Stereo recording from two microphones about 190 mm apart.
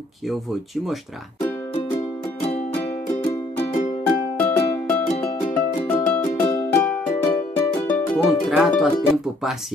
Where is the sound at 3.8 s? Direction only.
40° left (ahead or behind).